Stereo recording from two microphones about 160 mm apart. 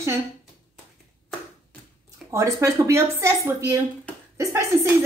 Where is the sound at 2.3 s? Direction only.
15° right (ahead or behind).